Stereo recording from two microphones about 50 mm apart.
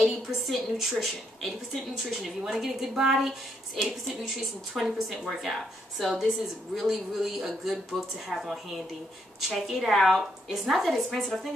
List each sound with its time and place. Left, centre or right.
0.0 s a woman's voice: centre
3.1 s a woman's voice: centre